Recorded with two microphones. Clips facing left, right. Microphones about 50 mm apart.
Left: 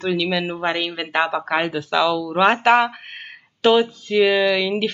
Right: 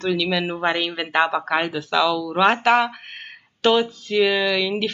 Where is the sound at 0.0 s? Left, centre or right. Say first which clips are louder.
Left 1 dB; centre.